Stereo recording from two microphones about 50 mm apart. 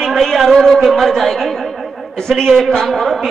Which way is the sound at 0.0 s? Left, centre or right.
Centre.